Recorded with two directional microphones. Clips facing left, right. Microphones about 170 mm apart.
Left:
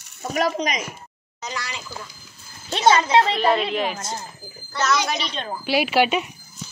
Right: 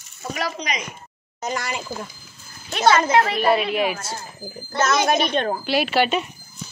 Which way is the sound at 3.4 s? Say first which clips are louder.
Right 1 dB; 10° right (ahead or behind).